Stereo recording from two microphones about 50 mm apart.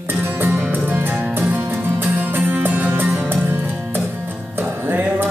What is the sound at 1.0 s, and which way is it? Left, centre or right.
Music, right.